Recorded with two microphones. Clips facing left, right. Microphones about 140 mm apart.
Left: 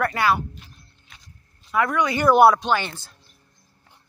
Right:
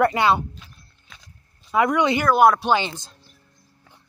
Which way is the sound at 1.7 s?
20° right (ahead or behind).